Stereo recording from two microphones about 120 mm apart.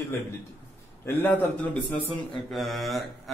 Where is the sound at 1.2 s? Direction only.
15° left (ahead or behind).